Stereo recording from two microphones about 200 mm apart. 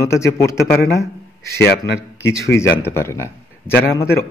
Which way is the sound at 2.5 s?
10° left (ahead or behind).